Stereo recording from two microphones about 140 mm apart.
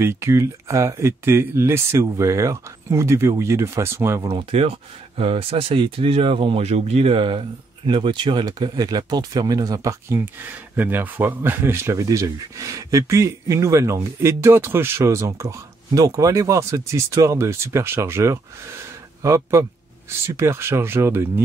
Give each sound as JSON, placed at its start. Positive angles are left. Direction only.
{"t": 0.0, "sound": "speech", "side_deg": -20}
{"t": 4.3, "sound": "speech", "side_deg": -45}